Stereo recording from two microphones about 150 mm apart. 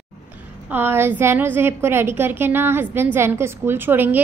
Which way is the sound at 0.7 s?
15° right (ahead or behind).